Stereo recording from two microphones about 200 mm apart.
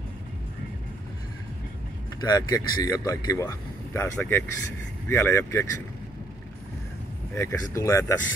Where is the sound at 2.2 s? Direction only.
20° left (ahead or behind).